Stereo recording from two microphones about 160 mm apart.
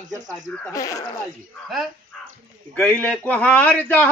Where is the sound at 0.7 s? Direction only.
20° left (ahead or behind).